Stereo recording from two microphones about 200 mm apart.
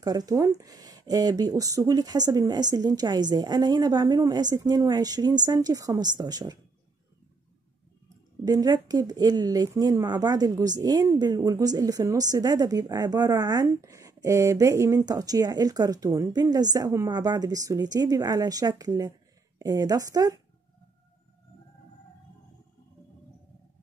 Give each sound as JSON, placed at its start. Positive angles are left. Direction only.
{"t": 0.0, "sound": "a woman's voice", "side_deg": -20}
{"t": 8.5, "sound": "a woman's voice", "side_deg": -20}